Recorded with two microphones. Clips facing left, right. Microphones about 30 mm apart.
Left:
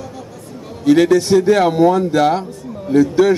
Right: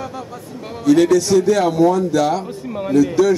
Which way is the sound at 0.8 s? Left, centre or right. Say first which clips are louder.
Left 1 dB; left.